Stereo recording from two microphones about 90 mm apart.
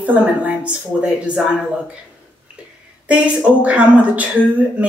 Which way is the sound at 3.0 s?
15° right (ahead or behind).